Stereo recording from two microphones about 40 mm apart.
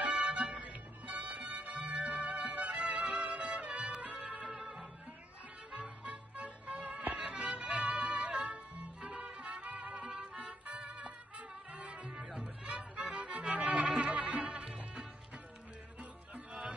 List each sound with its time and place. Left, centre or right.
0.0 s music: right
14.6 s music: centre
16.0 s music: right